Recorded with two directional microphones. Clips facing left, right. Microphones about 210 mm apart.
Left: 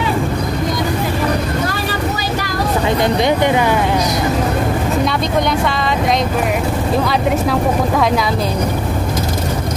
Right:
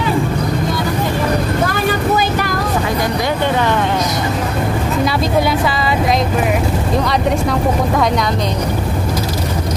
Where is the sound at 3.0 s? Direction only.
20° left (ahead or behind).